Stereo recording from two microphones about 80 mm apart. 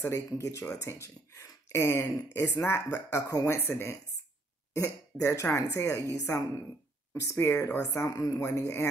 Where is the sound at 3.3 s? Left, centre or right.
Left.